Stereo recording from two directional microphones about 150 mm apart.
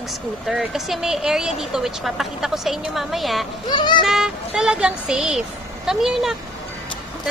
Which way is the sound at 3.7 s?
30° left (ahead or behind).